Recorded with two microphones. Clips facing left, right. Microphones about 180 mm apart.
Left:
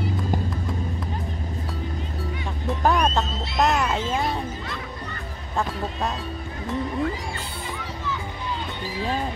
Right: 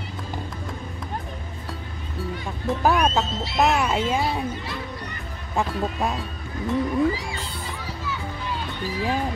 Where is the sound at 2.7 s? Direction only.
5° right (ahead or behind).